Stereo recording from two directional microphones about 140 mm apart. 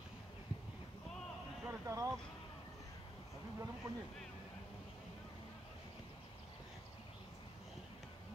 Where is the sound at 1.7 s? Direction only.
20° right (ahead or behind).